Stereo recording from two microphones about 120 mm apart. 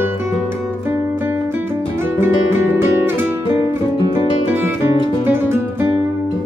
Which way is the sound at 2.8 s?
20° right (ahead or behind).